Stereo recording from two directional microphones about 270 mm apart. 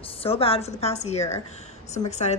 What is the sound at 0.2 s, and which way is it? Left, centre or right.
A woman's voice, left.